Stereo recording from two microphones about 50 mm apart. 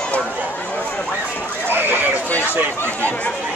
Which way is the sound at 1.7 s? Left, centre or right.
Right.